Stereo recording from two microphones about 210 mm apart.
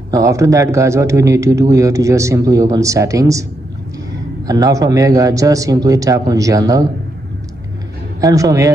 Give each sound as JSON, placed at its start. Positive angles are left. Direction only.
{"t": 0.1, "sound": "speech", "side_deg": -15}
{"t": 4.5, "sound": "speech", "side_deg": -15}
{"t": 8.2, "sound": "speech", "side_deg": -15}